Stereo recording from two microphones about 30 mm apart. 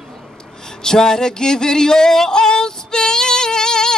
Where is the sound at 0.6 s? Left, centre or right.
Left.